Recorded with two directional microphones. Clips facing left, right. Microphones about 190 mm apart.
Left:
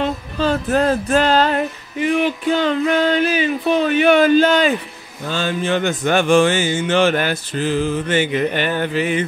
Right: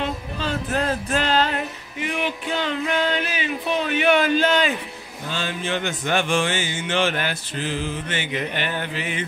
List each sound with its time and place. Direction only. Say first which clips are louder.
0.0 s music: left 7 dB; 40° left (ahead or behind)
5.3 s mantra: left 7 dB; 45° left (ahead or behind)